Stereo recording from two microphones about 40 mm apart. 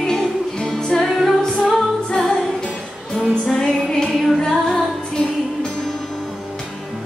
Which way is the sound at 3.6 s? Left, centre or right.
Centre.